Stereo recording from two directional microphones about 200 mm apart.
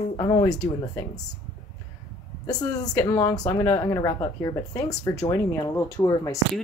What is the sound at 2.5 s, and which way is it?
Speech, 20° left (ahead or behind).